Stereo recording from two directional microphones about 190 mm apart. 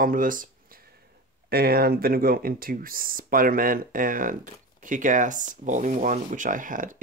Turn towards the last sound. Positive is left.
turn(degrees=-45)  # may be behind; listen again after turning